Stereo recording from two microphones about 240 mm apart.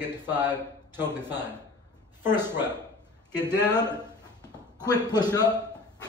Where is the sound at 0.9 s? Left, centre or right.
Centre.